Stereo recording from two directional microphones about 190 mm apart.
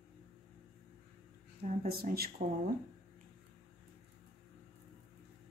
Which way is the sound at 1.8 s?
50° right (ahead or behind).